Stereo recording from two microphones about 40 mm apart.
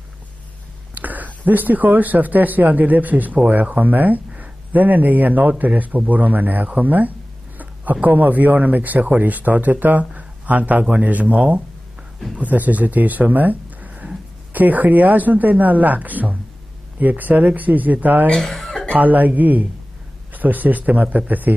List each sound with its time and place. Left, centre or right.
0.9 s a man's voice: right
18.3 s a sound: centre
18.9 s a man's voice: right